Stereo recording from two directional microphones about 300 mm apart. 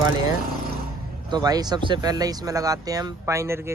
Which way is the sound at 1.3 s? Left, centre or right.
Centre.